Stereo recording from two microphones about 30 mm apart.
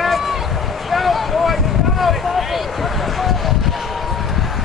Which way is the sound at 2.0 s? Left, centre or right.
Centre.